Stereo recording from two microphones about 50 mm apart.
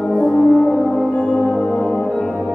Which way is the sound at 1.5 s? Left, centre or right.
Left.